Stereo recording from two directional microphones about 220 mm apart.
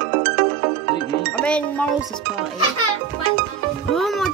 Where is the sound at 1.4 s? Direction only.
5° left (ahead or behind).